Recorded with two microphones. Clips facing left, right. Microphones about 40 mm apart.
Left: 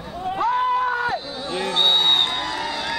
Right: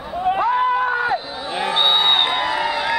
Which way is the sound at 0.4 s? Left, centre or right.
Centre.